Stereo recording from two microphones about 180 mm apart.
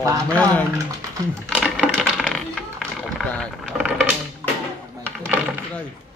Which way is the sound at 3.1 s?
Centre (ahead or behind).